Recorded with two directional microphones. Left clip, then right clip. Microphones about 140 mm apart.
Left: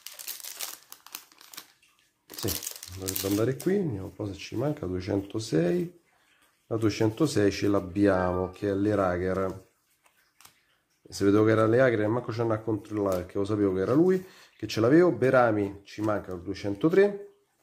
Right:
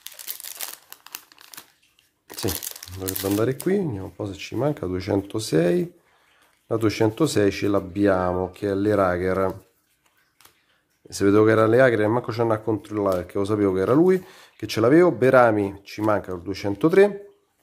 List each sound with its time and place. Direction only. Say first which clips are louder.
0.6 s crumpling: right 3 dB; 15° right (ahead or behind)
2.2 s crumpling: right 6 dB; 30° right (ahead or behind)
2.6 s speech: right 4 dB; 20° right (ahead or behind)
11.1 s speech: right 5 dB; 30° right (ahead or behind)